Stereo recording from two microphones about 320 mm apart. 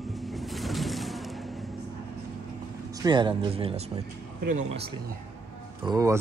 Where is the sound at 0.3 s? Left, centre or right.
Centre.